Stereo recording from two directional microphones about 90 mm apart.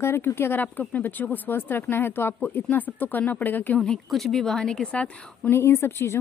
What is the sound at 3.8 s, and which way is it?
Speech, centre (ahead or behind).